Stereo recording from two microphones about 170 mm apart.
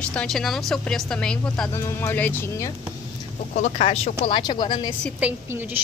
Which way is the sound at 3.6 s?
40° left (ahead or behind).